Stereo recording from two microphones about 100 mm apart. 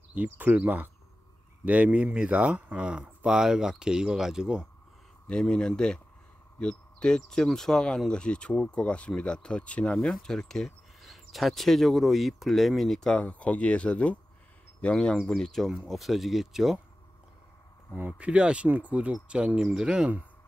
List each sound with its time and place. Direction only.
0.1 s speech: 15° right (ahead or behind)
5.3 s speech: 5° left (ahead or behind)
17.9 s speech: 15° right (ahead or behind)